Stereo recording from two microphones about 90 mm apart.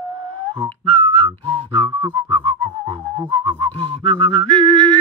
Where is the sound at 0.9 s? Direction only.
90° right.